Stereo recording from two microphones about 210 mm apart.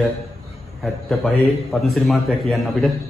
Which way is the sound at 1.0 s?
Centre (ahead or behind).